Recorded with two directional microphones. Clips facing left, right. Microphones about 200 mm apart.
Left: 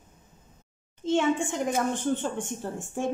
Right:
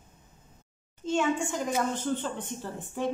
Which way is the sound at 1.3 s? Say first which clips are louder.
Left 2 dB; 55° left (ahead or behind).